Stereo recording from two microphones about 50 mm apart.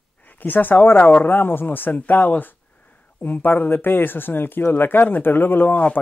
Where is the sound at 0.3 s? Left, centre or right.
Left.